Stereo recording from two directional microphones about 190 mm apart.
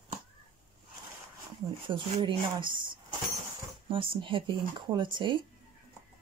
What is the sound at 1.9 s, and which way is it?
Speech, 25° right (ahead or behind).